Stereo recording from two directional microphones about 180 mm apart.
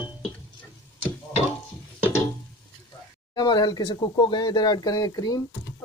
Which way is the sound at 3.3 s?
20° left (ahead or behind).